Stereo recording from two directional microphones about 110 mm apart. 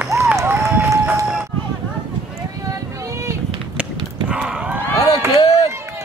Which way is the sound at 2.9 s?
30° right (ahead or behind).